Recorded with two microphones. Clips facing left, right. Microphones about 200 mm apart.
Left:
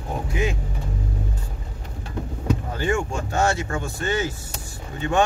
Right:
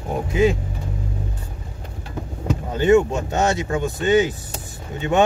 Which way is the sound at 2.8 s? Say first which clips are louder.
Right 9 dB; 20° right (ahead or behind).